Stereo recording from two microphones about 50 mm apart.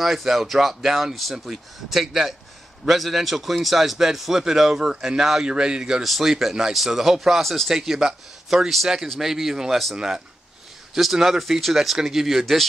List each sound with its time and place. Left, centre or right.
0.0 s a man's voice: centre
6.0 s a man's voice: centre
6.3 s a man's voice: centre